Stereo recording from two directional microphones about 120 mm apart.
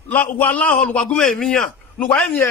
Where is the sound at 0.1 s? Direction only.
15° left (ahead or behind).